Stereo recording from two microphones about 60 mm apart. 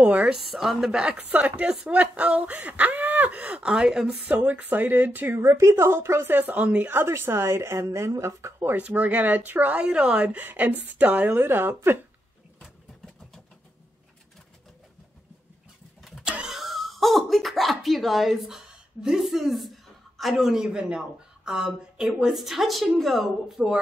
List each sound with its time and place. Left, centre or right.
0.0 s speech: right
0.3 s a woman's voice: centre
1.3 s speech: centre
4.2 s speech: right
5.3 s a woman's voice: right
6.9 s a woman's voice: right
8.7 s speech: right
11.3 s speech: right
16.3 s a sound: centre
18.7 s a sound: centre
19.2 s a woman's voice: centre